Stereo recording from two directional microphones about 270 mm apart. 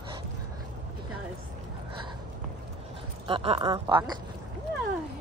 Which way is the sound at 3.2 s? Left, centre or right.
Right.